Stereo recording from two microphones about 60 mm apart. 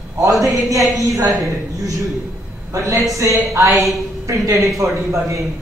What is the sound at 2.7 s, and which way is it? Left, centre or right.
Speech, right.